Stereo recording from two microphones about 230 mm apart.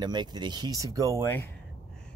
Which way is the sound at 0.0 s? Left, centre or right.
Centre.